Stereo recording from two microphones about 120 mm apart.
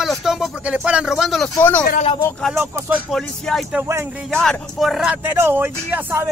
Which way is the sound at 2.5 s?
20° right (ahead or behind).